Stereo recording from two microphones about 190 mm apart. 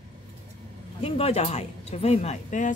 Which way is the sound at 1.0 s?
30° left (ahead or behind).